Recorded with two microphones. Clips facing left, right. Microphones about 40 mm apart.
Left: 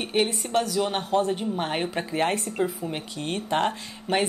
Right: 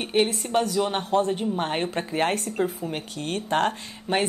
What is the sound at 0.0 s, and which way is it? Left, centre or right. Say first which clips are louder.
Speech: right 2 dB; centre.